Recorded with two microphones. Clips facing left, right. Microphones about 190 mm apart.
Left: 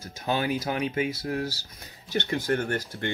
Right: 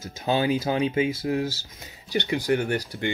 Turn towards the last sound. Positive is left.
turn(degrees=-15)  # may be behind; listen again after turning